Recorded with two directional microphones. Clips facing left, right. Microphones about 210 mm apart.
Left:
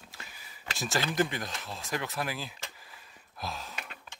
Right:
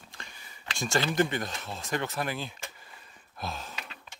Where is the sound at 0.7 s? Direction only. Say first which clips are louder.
Right 3 dB; centre (ahead or behind).